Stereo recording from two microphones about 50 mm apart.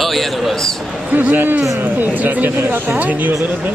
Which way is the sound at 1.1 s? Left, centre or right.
Right.